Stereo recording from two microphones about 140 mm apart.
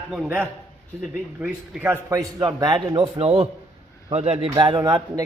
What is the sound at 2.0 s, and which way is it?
A man's voice, 25° right (ahead or behind).